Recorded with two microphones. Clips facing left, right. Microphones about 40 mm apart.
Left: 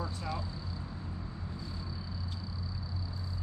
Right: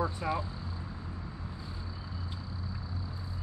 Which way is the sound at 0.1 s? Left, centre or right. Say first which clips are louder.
Right 5 dB; right.